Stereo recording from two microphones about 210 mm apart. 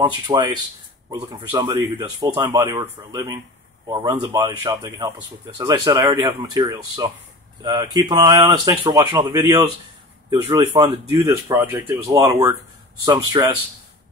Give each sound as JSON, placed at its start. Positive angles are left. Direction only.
{"t": 0.0, "sound": "speech", "side_deg": -20}